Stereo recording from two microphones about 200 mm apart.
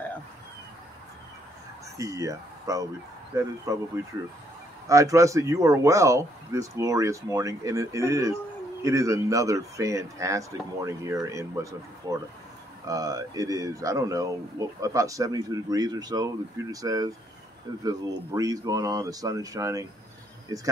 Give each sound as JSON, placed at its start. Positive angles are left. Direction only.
{"t": 2.0, "sound": "speech", "side_deg": -15}